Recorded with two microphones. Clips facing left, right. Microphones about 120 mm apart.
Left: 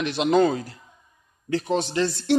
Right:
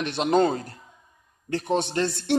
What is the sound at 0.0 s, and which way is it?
Speech, 50° right (ahead or behind).